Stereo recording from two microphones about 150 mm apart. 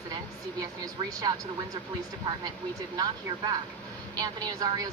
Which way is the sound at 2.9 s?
25° right (ahead or behind).